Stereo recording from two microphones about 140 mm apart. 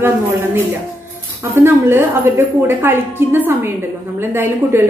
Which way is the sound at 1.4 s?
15° right (ahead or behind).